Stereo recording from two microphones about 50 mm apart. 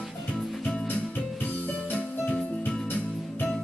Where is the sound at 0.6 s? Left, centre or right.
Left.